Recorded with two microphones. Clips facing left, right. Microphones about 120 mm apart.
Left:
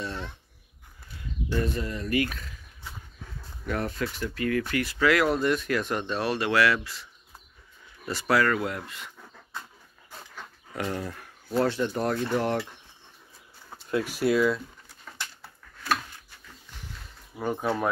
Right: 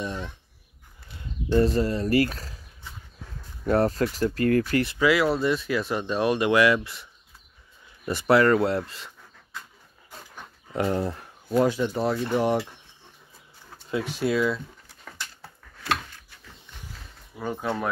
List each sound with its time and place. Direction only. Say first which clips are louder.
0.0 s a sound: right 3 dB; 15° right (ahead or behind)
1.6 s speech: right 9 dB; 35° right (ahead or behind)
3.6 s speech: right 8 dB; 35° right (ahead or behind)
4.9 s speech: even; 5° right (ahead or behind)
8.1 s speech: right 5 dB; 25° right (ahead or behind)
10.3 s a sound: right 7 dB; 25° right (ahead or behind)
11.5 s speech: right 3 dB; 5° right (ahead or behind)
14.0 s speech: left 1 dB; 5° left (ahead or behind)
17.4 s speech: left 1 dB; 10° left (ahead or behind)